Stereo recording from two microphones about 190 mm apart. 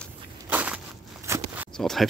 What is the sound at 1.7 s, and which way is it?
Speech, centre (ahead or behind).